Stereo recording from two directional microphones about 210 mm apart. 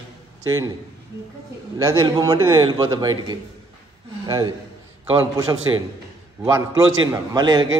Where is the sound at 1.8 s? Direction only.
20° right (ahead or behind).